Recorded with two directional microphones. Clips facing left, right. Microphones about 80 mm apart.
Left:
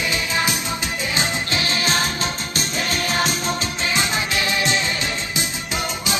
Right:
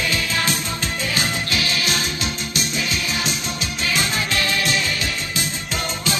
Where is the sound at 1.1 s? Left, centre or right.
Left.